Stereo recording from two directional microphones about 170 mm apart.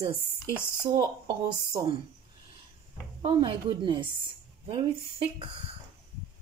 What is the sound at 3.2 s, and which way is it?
A woman's voice, 30° right (ahead or behind).